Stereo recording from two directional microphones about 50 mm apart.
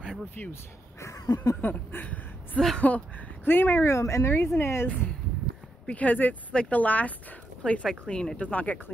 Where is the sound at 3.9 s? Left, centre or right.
Left.